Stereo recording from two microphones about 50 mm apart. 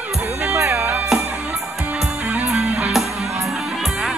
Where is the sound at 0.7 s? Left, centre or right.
Right.